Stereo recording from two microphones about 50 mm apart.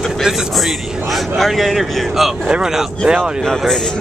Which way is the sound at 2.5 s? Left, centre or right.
Centre.